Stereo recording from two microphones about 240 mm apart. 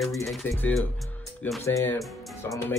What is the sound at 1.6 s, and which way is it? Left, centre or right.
A man's voice, centre.